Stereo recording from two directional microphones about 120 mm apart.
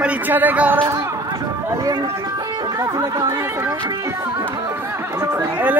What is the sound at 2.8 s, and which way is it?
Speech, 30° right (ahead or behind).